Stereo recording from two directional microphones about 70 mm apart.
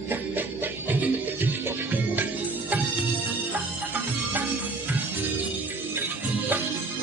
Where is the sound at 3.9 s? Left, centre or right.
Right.